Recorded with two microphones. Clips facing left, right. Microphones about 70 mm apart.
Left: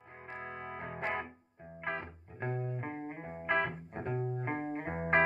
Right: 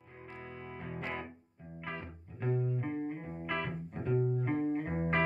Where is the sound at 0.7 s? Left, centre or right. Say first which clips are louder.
Left 3 dB; left.